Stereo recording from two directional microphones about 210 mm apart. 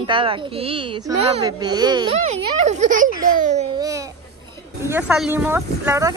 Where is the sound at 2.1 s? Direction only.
35° right (ahead or behind).